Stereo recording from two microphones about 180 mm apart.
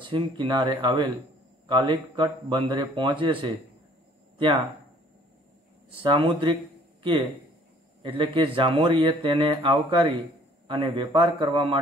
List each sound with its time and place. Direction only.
0.0 s speech: 25° right (ahead or behind)
5.9 s speech: 30° right (ahead or behind)
8.0 s speech: 30° right (ahead or behind)